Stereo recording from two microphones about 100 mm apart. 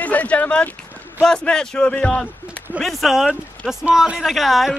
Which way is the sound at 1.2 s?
5° left (ahead or behind).